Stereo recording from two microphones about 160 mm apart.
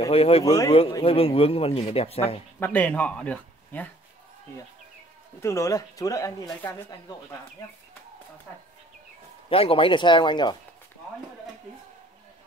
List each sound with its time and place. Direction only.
0.1 s speech: 40° left (ahead or behind)
2.6 s speech: 10° left (ahead or behind)
5.4 s speech: 20° left (ahead or behind)
9.5 s speech: 35° left (ahead or behind)